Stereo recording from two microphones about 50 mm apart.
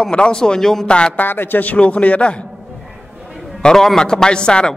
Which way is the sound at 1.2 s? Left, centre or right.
Left.